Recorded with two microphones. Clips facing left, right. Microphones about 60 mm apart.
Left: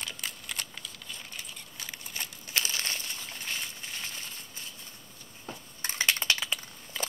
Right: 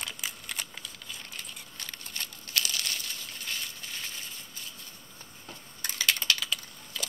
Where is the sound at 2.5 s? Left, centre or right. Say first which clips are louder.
Even; left.